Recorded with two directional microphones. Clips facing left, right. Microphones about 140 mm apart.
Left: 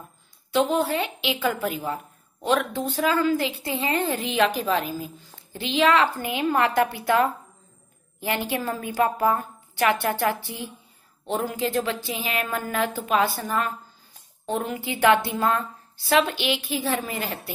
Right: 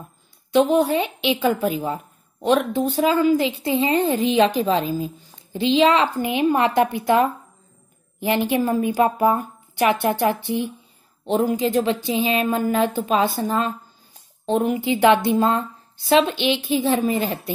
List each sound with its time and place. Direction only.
0.5 s a woman's voice: 15° right (ahead or behind)